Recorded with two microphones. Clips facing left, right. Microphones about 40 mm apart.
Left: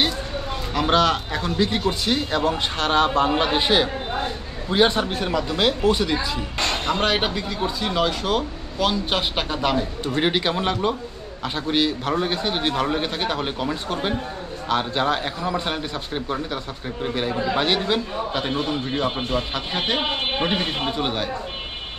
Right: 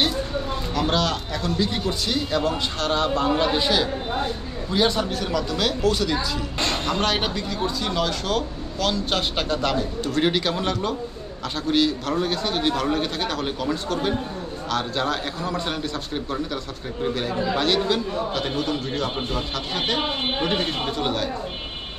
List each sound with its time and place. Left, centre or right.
0.7 s a man's voice: left